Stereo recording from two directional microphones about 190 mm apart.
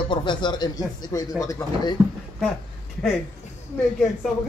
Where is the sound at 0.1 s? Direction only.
25° left (ahead or behind).